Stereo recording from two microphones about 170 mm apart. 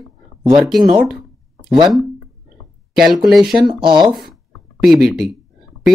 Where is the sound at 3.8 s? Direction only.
25° right (ahead or behind).